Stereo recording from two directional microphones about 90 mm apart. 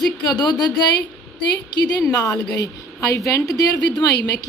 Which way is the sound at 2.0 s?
35° left (ahead or behind).